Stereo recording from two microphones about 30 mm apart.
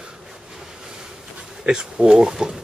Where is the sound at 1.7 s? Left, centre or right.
Right.